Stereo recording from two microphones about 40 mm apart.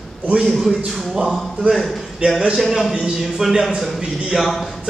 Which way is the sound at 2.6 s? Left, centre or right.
Centre.